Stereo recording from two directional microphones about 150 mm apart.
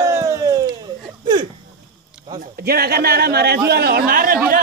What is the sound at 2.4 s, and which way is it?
A man's voice, 90° right.